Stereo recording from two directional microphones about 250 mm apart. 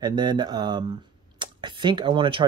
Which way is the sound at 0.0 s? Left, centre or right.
Centre.